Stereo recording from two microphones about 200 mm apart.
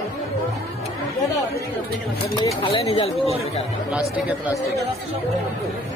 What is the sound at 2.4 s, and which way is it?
Speech, 25° left (ahead or behind).